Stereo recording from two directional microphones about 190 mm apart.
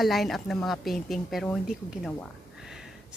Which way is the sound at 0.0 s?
Centre (ahead or behind).